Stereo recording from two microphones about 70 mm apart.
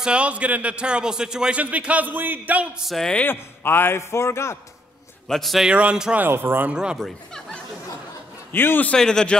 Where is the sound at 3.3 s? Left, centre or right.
Left.